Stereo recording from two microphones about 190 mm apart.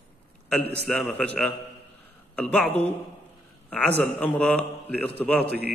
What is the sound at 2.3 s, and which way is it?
Speech, 5° left (ahead or behind).